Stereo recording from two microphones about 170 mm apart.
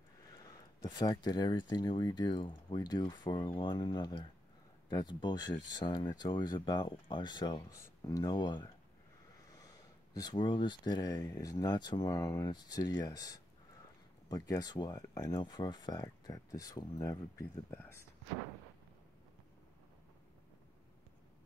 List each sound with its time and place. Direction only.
0.4 s speech: 25° left (ahead or behind)